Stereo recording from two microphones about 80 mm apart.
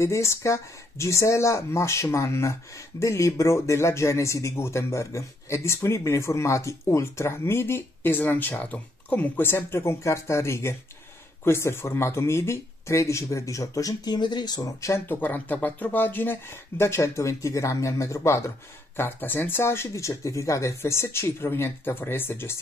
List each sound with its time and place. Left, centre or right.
0.0 s speech: left
14.6 s speech: left
15.0 s speech: left
19.9 s speech: left